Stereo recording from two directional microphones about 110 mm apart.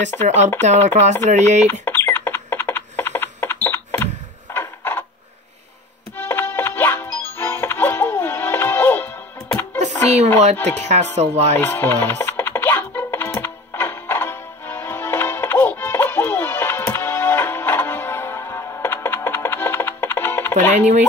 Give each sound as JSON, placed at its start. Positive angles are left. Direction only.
{"t": 0.2, "sound": "speech", "side_deg": -90}
{"t": 1.7, "sound": "a sound", "side_deg": 20}
{"t": 6.1, "sound": "music", "side_deg": 20}
{"t": 10.4, "sound": "speech", "side_deg": -90}
{"t": 11.1, "sound": "music", "side_deg": -80}
{"t": 11.6, "sound": "music", "side_deg": 20}
{"t": 20.7, "sound": "speech", "side_deg": -90}